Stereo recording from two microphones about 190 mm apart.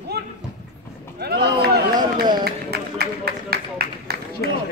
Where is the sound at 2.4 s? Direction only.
55° right (ahead or behind).